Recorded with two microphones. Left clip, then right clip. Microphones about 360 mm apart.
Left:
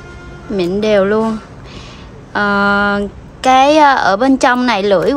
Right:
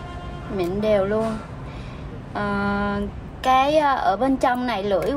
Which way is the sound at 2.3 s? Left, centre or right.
Left.